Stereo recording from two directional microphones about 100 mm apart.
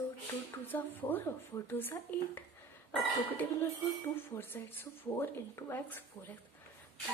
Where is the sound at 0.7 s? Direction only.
20° left (ahead or behind).